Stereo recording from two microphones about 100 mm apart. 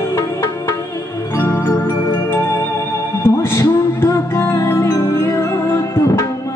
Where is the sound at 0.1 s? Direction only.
25° left (ahead or behind).